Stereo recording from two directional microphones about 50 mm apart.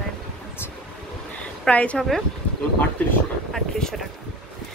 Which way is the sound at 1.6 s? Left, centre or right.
Left.